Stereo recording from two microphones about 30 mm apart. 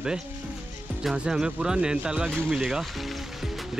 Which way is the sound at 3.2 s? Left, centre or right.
Centre.